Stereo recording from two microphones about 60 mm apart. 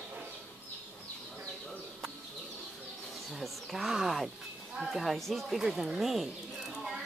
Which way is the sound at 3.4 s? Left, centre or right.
Centre.